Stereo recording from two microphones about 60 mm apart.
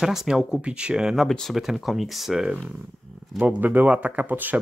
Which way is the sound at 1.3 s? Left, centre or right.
Centre.